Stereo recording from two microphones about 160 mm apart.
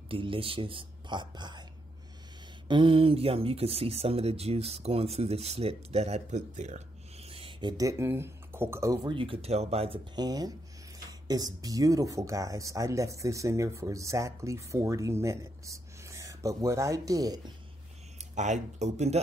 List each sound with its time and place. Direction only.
0.1 s speech: 35° right (ahead or behind)
2.7 s speech: 30° right (ahead or behind)
10.1 s speech: 25° right (ahead or behind)
18.3 s speech: 50° right (ahead or behind)